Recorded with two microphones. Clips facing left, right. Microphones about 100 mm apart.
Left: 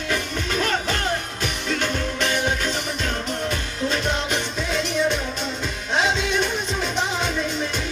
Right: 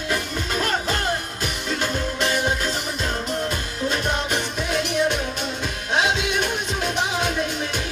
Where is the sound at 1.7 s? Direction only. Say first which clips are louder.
Left 1 dB; 10° right (ahead or behind).